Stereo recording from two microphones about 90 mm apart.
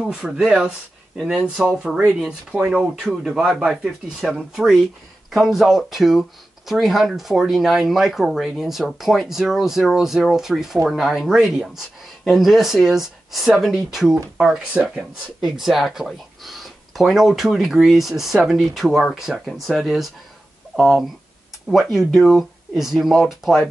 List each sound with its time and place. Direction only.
0.0 s speech: 5° right (ahead or behind)